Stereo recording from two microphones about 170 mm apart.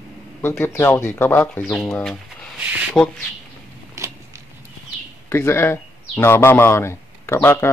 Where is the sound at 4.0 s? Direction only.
20° right (ahead or behind).